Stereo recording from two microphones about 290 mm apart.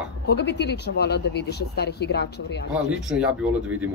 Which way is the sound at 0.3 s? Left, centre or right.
Left.